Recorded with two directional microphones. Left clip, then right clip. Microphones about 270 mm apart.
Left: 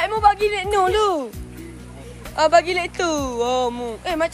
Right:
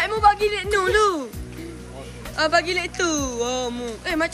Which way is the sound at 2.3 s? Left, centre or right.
Centre.